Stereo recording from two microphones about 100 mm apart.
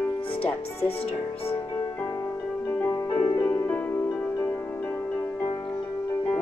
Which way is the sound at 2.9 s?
40° left (ahead or behind).